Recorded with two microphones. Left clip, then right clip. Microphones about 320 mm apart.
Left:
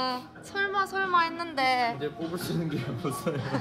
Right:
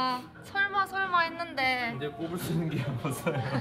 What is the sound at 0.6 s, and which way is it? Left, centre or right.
Speech, centre.